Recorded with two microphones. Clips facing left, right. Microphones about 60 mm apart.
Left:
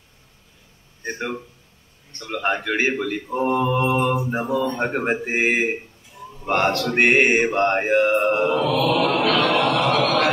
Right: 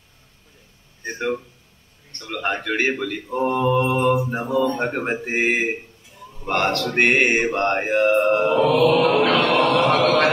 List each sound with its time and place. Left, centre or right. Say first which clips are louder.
2.1 s a man's voice: left 2 dB; centre
3.3 s mantra: right 1 dB; centre
4.8 s a man's voice: left 1 dB; centre
8.5 s chant: right 3 dB; right
10.0 s a sound: right 2 dB; right